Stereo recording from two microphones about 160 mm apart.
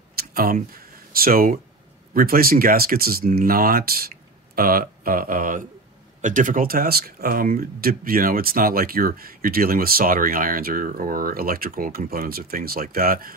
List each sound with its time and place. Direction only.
0.2 s speech: 70° right (ahead or behind)